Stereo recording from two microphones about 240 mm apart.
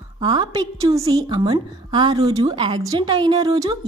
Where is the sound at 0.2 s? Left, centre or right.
Centre.